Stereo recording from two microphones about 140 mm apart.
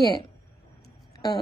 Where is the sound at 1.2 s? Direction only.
25° left (ahead or behind).